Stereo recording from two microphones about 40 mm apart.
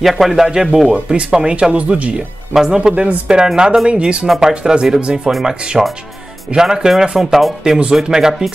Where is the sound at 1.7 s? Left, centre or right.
Right.